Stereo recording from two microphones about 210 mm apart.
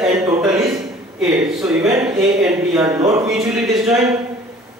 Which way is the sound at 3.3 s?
5° right (ahead or behind).